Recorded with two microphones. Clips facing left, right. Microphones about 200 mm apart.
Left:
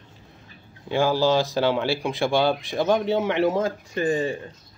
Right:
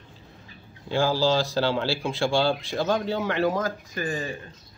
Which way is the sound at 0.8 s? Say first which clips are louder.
Left 2 dB; 20° left (ahead or behind).